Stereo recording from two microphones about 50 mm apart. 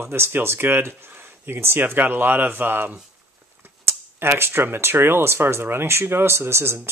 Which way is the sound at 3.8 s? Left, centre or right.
Right.